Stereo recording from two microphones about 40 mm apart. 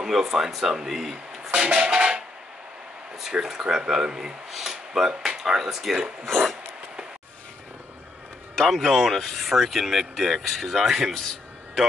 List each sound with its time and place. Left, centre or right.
0.0 s speech: centre
1.1 s a sound: centre
1.5 s music: right
3.3 s speech: centre
6.3 s a sound: centre
8.5 s speech: centre